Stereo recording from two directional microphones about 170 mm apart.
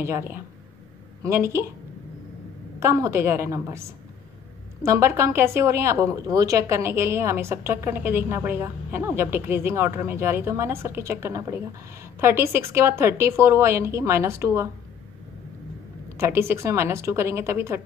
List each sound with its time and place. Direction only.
0.0 s a woman's voice: 15° right (ahead or behind)
2.8 s a woman's voice: 20° right (ahead or behind)
16.2 s a woman's voice: 15° right (ahead or behind)